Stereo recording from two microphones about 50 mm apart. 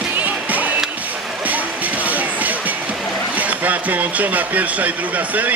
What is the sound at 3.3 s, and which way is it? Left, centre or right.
Speech, right.